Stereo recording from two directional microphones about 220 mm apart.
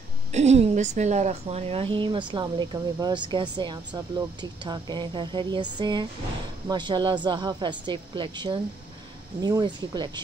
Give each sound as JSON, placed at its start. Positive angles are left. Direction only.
{"t": 0.3, "sound": "a woman's voice", "side_deg": -30}